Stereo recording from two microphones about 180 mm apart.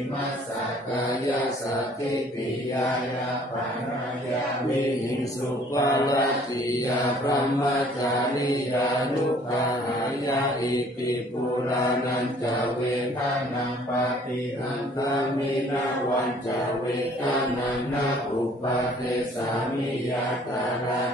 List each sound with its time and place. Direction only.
5.8 s mantra: 20° left (ahead or behind)